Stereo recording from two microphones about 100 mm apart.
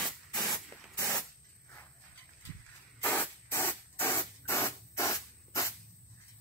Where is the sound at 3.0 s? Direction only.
20° left (ahead or behind).